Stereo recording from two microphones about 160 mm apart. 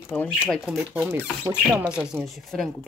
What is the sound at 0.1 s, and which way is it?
Speech, 10° left (ahead or behind).